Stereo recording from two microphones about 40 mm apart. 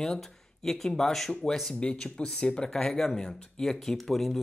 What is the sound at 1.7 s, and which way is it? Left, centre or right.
Speech, left.